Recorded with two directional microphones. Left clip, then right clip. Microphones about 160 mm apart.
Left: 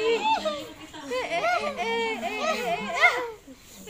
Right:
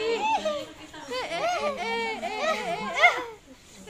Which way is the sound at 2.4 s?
10° right (ahead or behind).